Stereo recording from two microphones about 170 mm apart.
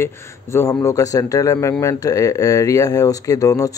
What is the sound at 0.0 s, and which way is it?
A man's voice, 15° left (ahead or behind).